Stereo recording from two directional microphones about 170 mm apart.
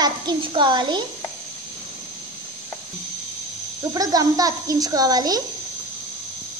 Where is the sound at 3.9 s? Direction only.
20° right (ahead or behind).